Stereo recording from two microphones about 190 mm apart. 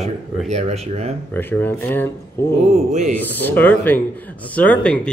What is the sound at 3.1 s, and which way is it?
Speech, 10° left (ahead or behind).